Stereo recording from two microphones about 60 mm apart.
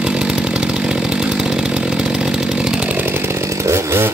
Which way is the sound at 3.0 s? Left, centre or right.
Right.